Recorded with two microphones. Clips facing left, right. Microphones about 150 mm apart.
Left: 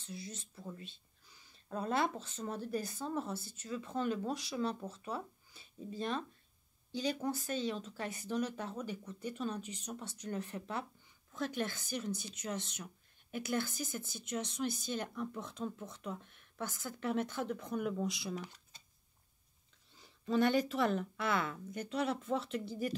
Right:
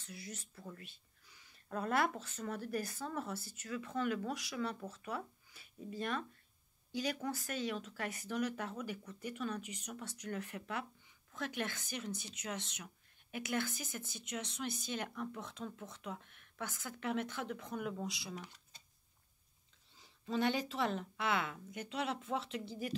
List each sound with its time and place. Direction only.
0.0 s speech: 25° left (ahead or behind); by 18.4 s 55° left (ahead or behind)
20.0 s a woman's voice: 55° left (ahead or behind)